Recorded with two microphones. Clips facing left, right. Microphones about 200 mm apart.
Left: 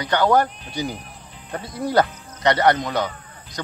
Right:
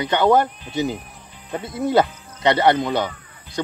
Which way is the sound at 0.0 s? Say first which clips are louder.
Right 1 dB; 25° right (ahead or behind).